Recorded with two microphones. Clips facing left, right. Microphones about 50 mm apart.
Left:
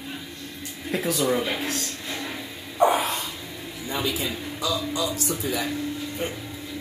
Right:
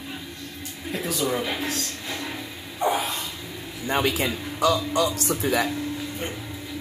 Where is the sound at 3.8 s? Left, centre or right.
Right.